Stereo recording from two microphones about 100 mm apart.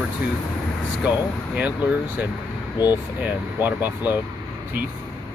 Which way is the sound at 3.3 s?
15° right (ahead or behind).